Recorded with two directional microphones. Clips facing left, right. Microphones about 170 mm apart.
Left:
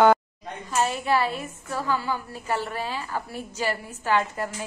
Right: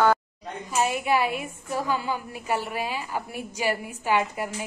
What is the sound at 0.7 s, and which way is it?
A woman's voice, 15° right (ahead or behind).